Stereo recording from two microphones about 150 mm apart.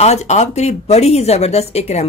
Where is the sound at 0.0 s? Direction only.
50° left (ahead or behind).